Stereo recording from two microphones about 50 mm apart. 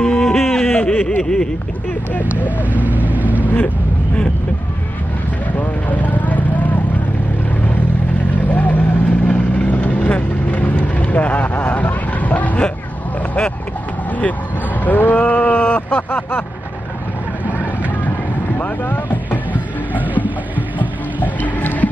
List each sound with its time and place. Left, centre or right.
0.0 s a sound: centre
2.7 s speech: right
3.4 s speech: left
5.6 s vehicle: left
8.5 s vehicle: left
14.9 s a sound: left
18.6 s vehicle: left
20.8 s music: left